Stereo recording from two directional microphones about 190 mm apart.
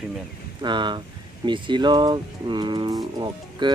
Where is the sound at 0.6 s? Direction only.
25° right (ahead or behind).